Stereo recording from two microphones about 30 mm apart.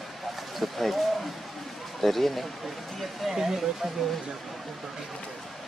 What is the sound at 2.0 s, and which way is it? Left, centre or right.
Speech, centre.